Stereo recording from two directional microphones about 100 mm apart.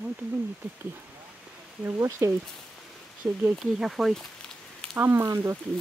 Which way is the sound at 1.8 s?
30° right (ahead or behind).